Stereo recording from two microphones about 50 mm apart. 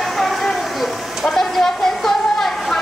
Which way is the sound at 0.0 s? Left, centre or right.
Centre.